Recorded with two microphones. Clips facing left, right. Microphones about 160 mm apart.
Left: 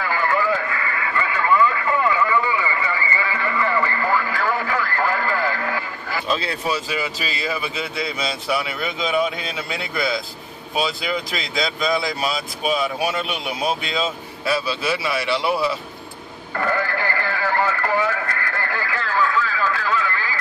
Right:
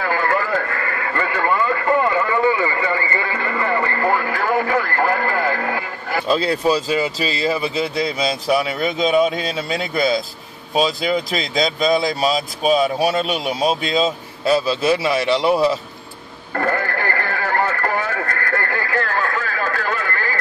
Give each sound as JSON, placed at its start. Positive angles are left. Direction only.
{"t": 0.0, "sound": "radio", "side_deg": -50}
{"t": 6.2, "sound": "speech", "side_deg": -35}
{"t": 16.5, "sound": "radio", "side_deg": -50}